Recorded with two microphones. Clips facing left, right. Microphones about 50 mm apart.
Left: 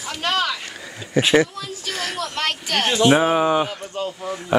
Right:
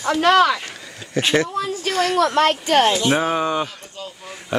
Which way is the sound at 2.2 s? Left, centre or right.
Right.